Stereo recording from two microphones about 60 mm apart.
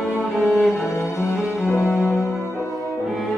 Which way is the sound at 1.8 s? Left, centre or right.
Centre.